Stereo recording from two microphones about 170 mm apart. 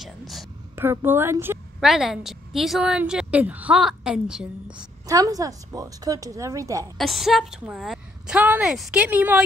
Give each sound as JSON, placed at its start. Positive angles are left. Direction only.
{"t": 0.0, "sound": "a woman's voice", "side_deg": 0}
{"t": 0.7, "sound": "a woman's voice", "side_deg": -15}
{"t": 1.8, "sound": "a woman's voice", "side_deg": 0}
{"t": 5.0, "sound": "a woman's voice", "side_deg": -20}
{"t": 7.0, "sound": "a woman's voice", "side_deg": 0}